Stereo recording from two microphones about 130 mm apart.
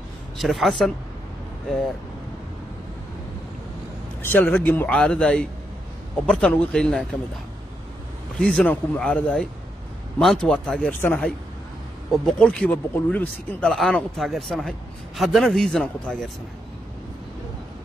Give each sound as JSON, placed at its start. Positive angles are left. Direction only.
{"t": 0.4, "sound": "speech", "side_deg": 0}
{"t": 4.2, "sound": "speech", "side_deg": 15}
{"t": 8.4, "sound": "speech", "side_deg": 5}
{"t": 12.1, "sound": "speech", "side_deg": 5}